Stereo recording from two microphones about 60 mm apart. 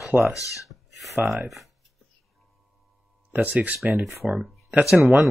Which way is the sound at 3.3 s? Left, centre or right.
Right.